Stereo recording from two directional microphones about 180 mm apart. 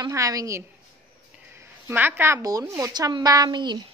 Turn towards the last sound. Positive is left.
turn(degrees=-25)  # may be behind; listen again after turning